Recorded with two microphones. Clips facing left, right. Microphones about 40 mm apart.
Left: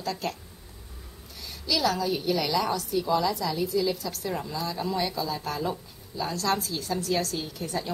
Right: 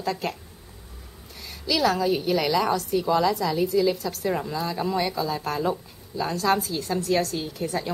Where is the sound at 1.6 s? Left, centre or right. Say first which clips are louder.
Right 4 dB; centre.